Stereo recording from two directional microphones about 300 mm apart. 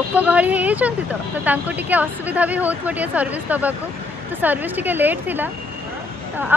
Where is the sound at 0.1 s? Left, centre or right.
Centre.